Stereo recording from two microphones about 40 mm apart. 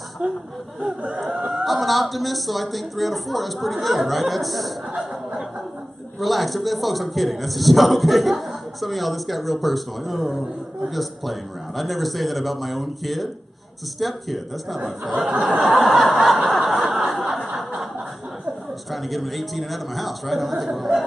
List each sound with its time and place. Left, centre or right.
0.2 s speech: right
0.8 s speech: right
1.5 s a man's voice: centre
6.1 s a man's voice: centre
17.1 s snicker: centre
18.9 s a man's voice: centre